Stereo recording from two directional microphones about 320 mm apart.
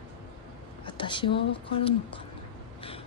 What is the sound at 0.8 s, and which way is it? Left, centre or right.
Speech, centre.